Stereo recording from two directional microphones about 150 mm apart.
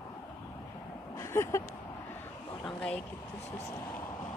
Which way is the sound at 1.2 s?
20° left (ahead or behind).